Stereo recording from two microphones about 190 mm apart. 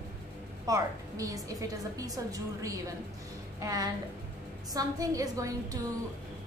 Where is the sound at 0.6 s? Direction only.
15° right (ahead or behind).